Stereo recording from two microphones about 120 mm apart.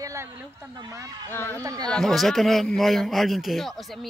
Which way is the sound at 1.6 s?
30° right (ahead or behind).